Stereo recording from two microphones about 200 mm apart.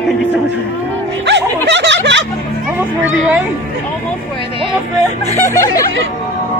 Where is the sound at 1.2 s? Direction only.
60° right (ahead or behind).